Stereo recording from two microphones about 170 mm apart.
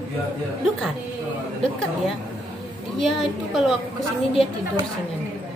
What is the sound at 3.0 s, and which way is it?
Speech, centre (ahead or behind).